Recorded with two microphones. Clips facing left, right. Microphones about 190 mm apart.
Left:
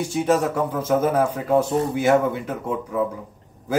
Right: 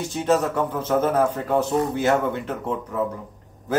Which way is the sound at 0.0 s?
10° left (ahead or behind).